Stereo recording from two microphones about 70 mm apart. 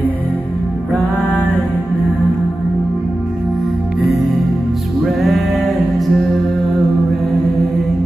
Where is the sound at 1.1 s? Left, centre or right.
Right.